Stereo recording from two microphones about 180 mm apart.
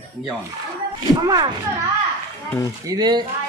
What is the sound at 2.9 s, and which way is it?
Speech, 25° right (ahead or behind).